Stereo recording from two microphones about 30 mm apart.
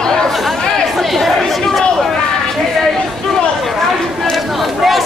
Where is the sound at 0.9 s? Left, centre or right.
Centre.